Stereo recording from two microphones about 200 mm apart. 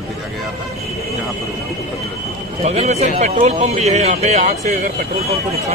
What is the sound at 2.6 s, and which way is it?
A man's voice, 30° right (ahead or behind).